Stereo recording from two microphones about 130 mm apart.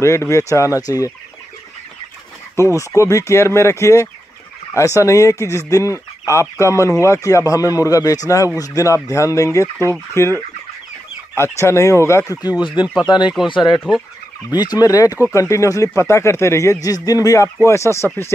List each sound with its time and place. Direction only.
0.0 s speech: 20° left (ahead or behind)
2.5 s speech: 20° left (ahead or behind)
13.9 s speech: 5° right (ahead or behind)
14.5 s speech: 30° left (ahead or behind)